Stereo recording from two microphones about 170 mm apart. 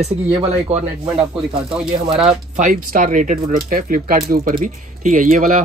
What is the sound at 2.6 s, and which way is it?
Speech, 55° right (ahead or behind).